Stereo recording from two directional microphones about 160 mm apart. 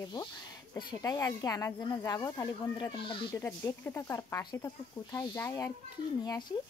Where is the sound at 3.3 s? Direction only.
15° left (ahead or behind).